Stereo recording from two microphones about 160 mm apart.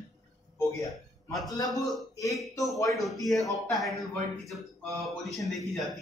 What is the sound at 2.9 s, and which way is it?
A man's voice, centre (ahead or behind).